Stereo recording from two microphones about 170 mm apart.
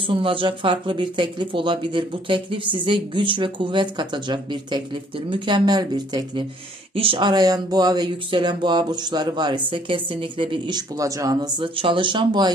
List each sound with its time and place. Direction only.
0.1 s speech: 30° right (ahead or behind)
11.7 s speech: 30° right (ahead or behind)